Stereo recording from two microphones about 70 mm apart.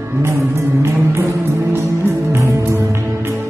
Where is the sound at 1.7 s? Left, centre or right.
Right.